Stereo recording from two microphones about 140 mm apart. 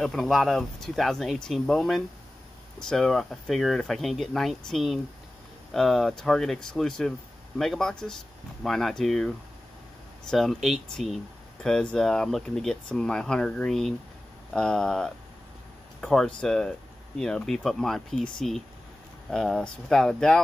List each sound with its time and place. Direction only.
0.0 s speech: centre (ahead or behind)
10.3 s speech: centre (ahead or behind)